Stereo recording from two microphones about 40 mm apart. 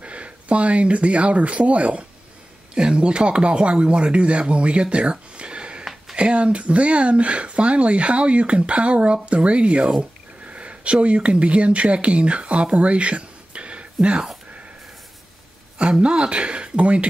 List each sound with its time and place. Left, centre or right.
0.0 s speech: right
12.7 s a sound: right
15.8 s speech: right